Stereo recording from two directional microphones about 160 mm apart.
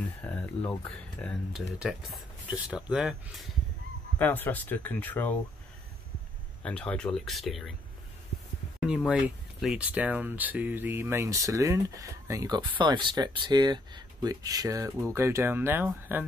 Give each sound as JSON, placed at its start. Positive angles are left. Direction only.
{"t": 0.2, "sound": "speech", "side_deg": 10}
{"t": 4.2, "sound": "speech", "side_deg": 10}
{"t": 6.6, "sound": "speech", "side_deg": 5}
{"t": 8.7, "sound": "speech", "side_deg": -5}